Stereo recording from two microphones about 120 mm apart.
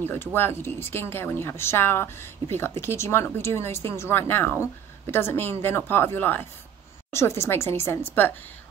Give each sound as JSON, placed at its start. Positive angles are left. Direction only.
{"t": 0.0, "sound": "speech", "side_deg": 15}